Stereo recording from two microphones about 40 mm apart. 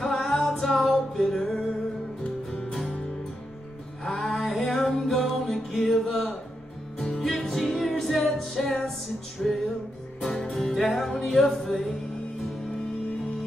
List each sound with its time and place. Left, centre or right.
0.0 s music: centre
4.0 s a sound: centre
5.0 s music: centre
7.2 s music: centre